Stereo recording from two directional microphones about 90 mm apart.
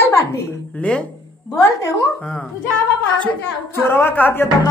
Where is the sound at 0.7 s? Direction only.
15° left (ahead or behind).